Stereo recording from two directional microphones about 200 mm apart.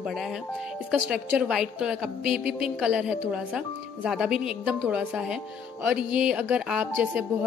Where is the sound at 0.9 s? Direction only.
Centre (ahead or behind).